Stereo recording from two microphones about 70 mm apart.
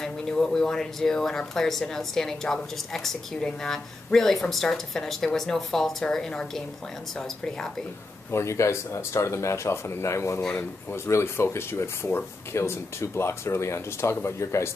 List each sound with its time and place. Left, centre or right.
0.0 s speech: centre
8.3 s speech: left